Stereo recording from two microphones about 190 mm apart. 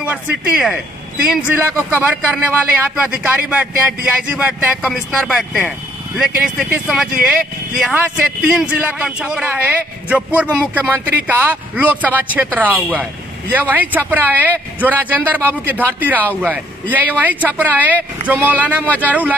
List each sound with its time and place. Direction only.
0.0 s a man's voice: 5° right (ahead or behind)